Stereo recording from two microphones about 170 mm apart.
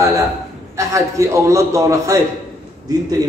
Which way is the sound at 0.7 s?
20° right (ahead or behind).